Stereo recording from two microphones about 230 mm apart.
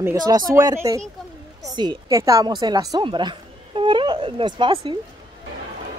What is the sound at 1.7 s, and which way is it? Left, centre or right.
Music, centre.